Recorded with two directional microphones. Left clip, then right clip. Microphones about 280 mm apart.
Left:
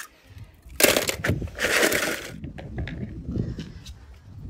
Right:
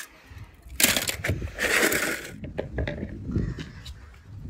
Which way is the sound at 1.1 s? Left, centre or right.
Centre.